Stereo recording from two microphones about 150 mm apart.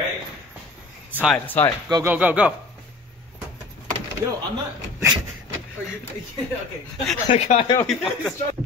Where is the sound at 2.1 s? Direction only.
10° right (ahead or behind).